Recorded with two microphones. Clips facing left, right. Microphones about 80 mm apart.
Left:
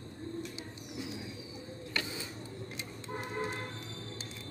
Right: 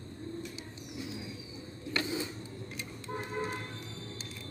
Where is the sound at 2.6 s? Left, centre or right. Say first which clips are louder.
Right 1 dB; left.